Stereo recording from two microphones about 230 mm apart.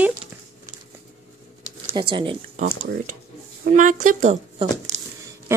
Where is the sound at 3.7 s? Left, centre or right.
Right.